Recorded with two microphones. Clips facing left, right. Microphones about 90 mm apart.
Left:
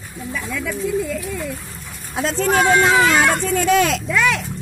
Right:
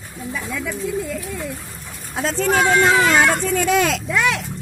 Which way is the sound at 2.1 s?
Centre (ahead or behind).